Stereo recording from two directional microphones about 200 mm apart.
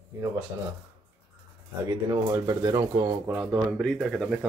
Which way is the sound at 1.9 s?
20° right (ahead or behind).